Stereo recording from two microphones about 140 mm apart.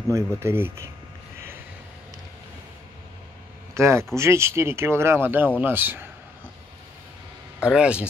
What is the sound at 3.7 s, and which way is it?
Speech, 20° right (ahead or behind).